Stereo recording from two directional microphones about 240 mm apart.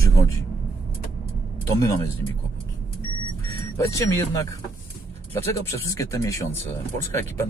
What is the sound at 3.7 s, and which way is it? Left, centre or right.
Speech, centre.